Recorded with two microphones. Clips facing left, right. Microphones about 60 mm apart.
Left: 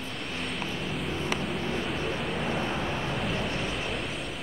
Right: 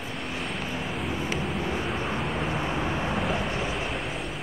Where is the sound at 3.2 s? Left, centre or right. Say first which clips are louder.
Right 3 dB; centre.